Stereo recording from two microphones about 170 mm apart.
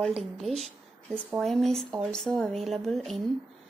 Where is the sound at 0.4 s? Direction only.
Centre (ahead or behind).